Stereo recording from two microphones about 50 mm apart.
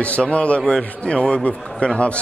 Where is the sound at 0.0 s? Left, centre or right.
Left.